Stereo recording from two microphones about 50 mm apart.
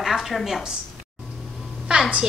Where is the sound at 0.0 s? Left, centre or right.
Centre.